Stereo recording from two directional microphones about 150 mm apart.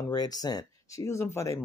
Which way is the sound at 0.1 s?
25° left (ahead or behind).